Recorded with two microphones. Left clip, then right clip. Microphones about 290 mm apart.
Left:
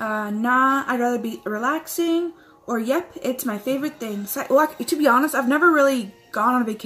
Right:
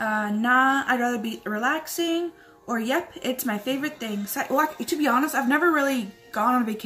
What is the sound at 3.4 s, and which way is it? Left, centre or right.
A woman's voice, centre.